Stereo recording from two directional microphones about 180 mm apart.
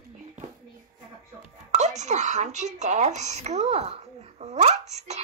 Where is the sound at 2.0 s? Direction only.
40° right (ahead or behind).